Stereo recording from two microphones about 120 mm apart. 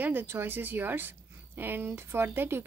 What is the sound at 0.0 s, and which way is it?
A woman's voice, 15° right (ahead or behind).